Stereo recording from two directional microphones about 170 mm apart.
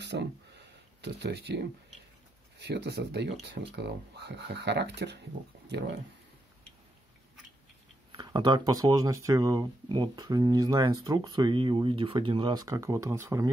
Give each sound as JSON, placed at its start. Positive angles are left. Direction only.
{"t": 0.0, "sound": "a sound", "side_deg": -85}
{"t": 2.6, "sound": "speech", "side_deg": -90}
{"t": 8.1, "sound": "speech", "side_deg": -25}